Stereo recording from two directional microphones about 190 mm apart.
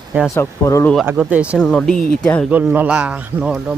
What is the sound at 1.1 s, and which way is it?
Speech, 10° right (ahead or behind).